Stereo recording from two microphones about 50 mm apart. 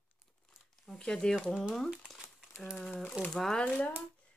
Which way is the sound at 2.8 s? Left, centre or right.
Centre.